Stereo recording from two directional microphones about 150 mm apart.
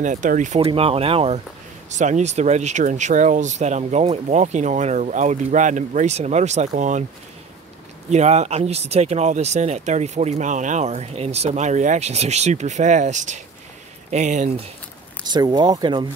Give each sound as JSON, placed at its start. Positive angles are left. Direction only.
{"t": 0.0, "sound": "speech", "side_deg": -55}
{"t": 0.7, "sound": "speech", "side_deg": -40}
{"t": 1.9, "sound": "speech", "side_deg": -50}
{"t": 8.1, "sound": "speech", "side_deg": -50}
{"t": 15.2, "sound": "speech", "side_deg": -30}